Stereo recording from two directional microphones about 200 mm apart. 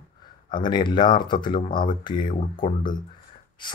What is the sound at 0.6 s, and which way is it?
Speech, 20° left (ahead or behind).